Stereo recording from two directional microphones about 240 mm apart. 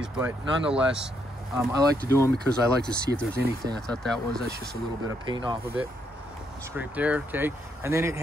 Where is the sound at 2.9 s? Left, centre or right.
Right.